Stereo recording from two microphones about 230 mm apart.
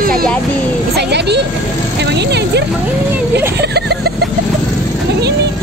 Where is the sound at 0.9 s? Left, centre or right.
Right.